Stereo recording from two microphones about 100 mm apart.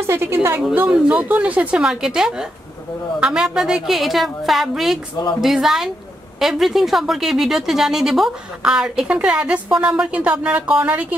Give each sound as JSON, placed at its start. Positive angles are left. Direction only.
{"t": 0.0, "sound": "a woman's voice", "side_deg": -25}